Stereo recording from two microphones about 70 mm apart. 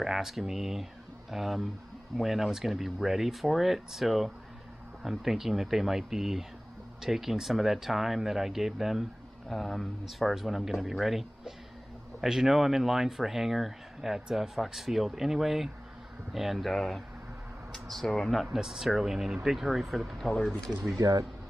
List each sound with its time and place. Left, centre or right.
0.0 s speech: centre
20.9 s speech: right